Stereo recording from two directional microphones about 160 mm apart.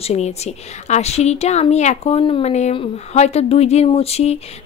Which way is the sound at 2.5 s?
45° left (ahead or behind).